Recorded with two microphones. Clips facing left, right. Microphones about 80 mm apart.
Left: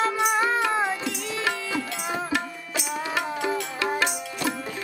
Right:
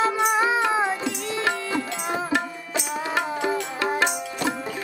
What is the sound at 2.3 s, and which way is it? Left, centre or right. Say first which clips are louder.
Music: right 3 dB; right.